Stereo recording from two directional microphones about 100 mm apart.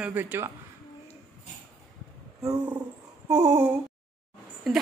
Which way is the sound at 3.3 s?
90° right.